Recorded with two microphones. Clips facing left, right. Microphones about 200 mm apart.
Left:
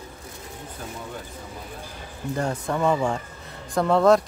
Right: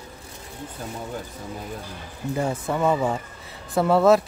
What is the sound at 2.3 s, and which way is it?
Speech, 5° right (ahead or behind).